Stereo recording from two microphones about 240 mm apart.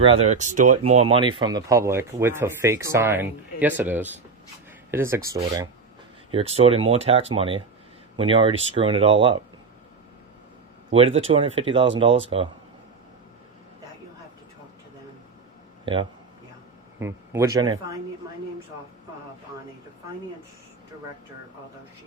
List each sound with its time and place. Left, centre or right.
0.0 s speech: right
1.0 s speech: right
10.9 s speech: right
15.8 s speech: right